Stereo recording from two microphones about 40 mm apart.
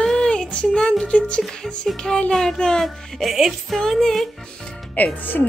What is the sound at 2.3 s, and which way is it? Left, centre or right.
Music, centre.